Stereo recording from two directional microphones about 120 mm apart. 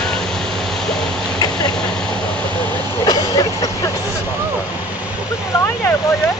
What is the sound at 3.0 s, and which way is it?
Vehicle, 30° left (ahead or behind).